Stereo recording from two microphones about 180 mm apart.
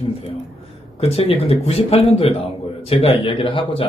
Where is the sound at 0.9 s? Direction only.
35° left (ahead or behind).